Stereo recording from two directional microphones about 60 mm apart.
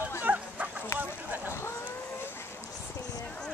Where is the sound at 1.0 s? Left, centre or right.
Right.